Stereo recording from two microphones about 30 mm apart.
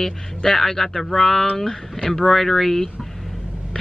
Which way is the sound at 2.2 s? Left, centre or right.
Centre.